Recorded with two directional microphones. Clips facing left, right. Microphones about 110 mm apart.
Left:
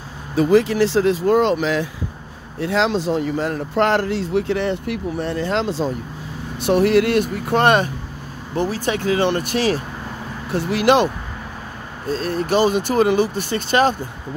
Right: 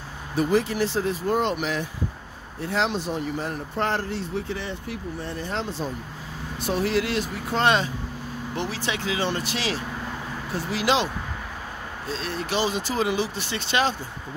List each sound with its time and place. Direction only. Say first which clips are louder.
0.5 s speech: left 9 dB; 90° left
6.6 s speech: left 9 dB; 65° left (ahead or behind)
8.5 s speech: left 9 dB; 45° left (ahead or behind)
10.5 s speech: left 8 dB; 65° left (ahead or behind)
12.1 s speech: left 9 dB; 45° left (ahead or behind)